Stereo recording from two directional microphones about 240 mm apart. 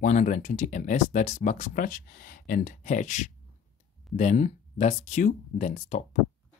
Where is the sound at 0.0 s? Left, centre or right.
Left.